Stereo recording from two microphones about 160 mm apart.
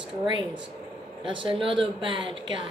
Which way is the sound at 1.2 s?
30° right (ahead or behind).